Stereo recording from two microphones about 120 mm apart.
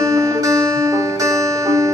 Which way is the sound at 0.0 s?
30° right (ahead or behind).